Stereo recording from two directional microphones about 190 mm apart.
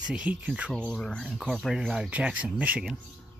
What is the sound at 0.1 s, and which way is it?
Speech, 5° right (ahead or behind).